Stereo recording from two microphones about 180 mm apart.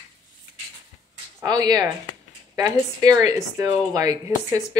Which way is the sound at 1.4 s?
20° right (ahead or behind).